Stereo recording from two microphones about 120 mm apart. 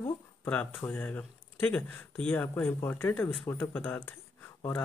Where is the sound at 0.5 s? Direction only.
10° left (ahead or behind).